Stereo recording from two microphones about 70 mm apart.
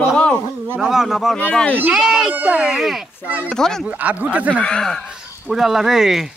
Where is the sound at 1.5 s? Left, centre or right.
Centre.